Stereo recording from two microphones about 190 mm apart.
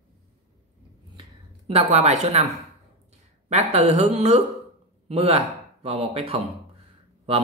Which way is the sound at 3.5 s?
35° right (ahead or behind).